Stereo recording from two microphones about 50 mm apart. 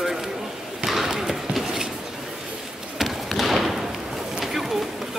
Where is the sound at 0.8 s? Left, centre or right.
Centre.